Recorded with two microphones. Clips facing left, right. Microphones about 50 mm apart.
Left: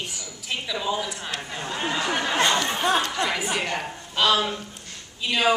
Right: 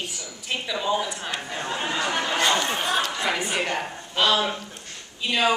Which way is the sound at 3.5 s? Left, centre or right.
Centre.